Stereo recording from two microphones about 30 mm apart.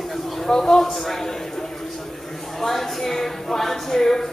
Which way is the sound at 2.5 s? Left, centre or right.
Centre.